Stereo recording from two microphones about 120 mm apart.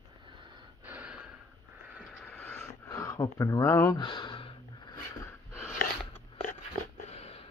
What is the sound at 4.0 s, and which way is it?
Speech, 40° left (ahead or behind).